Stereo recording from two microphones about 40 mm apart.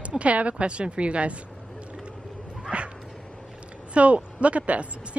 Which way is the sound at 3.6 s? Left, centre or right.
Right.